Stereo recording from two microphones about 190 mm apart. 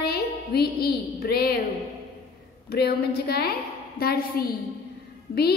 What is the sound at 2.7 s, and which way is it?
A woman's voice, 55° left (ahead or behind).